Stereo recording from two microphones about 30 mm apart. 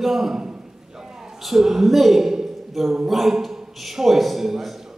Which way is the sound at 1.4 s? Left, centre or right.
Centre.